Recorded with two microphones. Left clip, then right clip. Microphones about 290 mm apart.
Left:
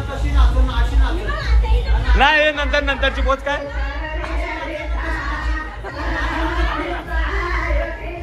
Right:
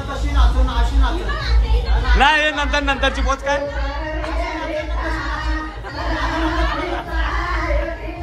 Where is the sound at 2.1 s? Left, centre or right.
Centre.